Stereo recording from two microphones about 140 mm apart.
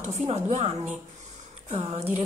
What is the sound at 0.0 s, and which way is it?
A woman's voice, 50° right (ahead or behind).